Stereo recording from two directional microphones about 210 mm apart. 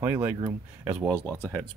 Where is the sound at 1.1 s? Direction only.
10° left (ahead or behind).